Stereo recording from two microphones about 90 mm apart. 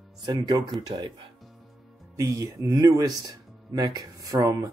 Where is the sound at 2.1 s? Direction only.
35° right (ahead or behind).